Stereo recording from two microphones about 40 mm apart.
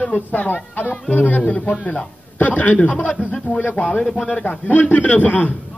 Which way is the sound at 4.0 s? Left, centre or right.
Centre.